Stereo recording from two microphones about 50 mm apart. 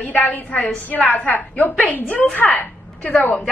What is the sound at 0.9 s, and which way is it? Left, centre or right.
A woman's voice, left.